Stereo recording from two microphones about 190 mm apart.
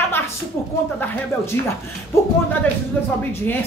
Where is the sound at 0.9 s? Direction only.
10° left (ahead or behind).